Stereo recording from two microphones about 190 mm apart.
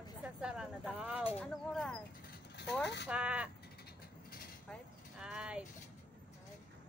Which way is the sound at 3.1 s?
5° right (ahead or behind).